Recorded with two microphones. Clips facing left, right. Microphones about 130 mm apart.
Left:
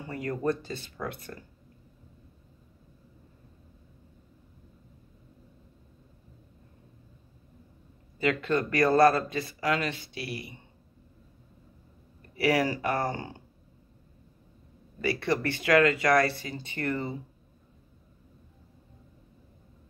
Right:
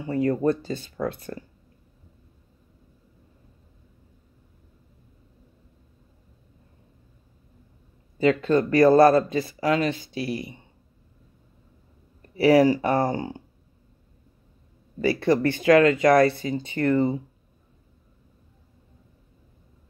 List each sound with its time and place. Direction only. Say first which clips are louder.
0.0 s speech: right 8 dB; 25° right (ahead or behind)
8.2 s speech: right 7 dB; 35° right (ahead or behind)
12.4 s speech: right 9 dB; 30° right (ahead or behind)
15.0 s speech: right 7 dB; 35° right (ahead or behind)
15.5 s speech: right 4 dB; 25° right (ahead or behind)